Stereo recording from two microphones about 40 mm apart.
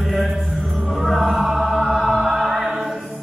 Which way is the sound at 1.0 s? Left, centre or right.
Centre.